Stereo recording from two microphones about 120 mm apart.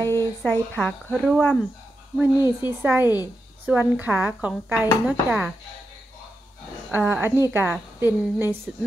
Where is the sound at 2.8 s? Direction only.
15° right (ahead or behind).